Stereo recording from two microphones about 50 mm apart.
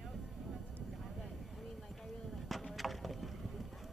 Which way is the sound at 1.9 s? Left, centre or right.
Centre.